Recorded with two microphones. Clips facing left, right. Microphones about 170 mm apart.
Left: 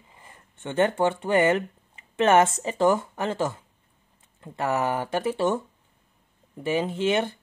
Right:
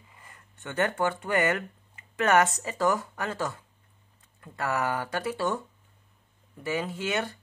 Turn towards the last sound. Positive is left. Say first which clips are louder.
# left 6 dB
turn(degrees=25)  # may be behind; listen again after turning